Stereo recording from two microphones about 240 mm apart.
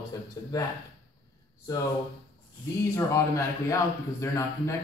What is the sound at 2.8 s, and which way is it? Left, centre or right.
Speech, centre.